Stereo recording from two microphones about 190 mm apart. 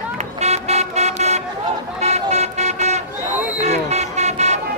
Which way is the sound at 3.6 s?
35° right (ahead or behind).